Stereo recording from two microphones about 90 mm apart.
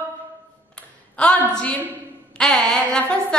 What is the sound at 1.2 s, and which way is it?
A woman's voice, 15° left (ahead or behind).